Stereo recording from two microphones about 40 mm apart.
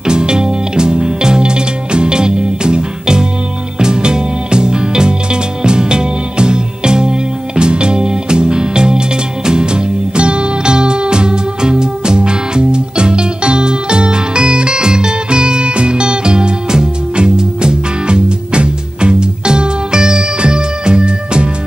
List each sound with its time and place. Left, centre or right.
0.0 s music: centre